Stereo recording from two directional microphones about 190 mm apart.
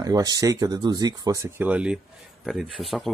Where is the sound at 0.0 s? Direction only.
20° right (ahead or behind).